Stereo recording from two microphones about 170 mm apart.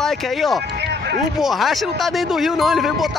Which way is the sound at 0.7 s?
80° right.